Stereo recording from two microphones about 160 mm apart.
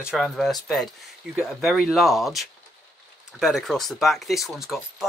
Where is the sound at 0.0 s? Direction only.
Centre (ahead or behind).